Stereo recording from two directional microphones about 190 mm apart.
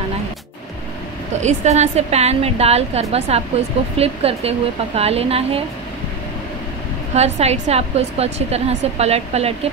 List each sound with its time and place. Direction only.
1.4 s a woman's voice: 40° right (ahead or behind)
7.2 s a woman's voice: 35° right (ahead or behind)